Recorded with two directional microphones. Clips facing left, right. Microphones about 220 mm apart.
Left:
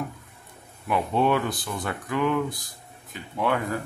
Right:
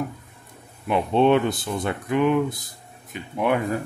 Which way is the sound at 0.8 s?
25° right (ahead or behind).